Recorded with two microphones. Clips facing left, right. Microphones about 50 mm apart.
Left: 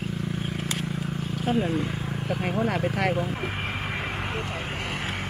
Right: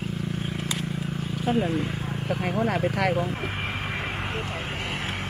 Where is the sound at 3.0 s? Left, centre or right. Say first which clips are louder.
Right 1 dB; centre.